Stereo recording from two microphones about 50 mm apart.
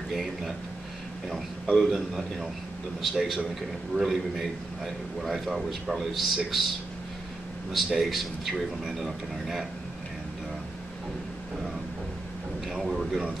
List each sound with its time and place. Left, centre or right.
0.1 s a man's voice: centre
1.8 s a man's voice: centre
7.7 s a man's voice: centre
12.7 s a man's voice: centre